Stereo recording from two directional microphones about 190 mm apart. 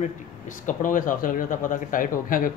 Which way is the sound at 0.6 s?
45° left (ahead or behind).